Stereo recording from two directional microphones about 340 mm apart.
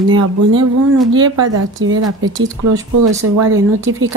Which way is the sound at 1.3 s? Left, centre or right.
Right.